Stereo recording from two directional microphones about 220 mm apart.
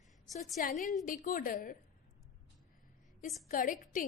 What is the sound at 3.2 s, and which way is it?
Speech, 40° left (ahead or behind).